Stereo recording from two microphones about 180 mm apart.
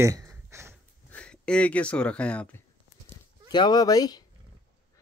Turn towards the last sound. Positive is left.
turn(degrees=20)  # may be behind; listen again after turning